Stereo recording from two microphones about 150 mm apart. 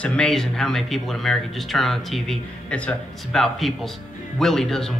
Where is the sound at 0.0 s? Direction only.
5° left (ahead or behind).